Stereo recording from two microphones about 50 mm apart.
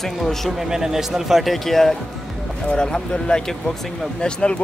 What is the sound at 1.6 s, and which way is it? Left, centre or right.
Speech, centre.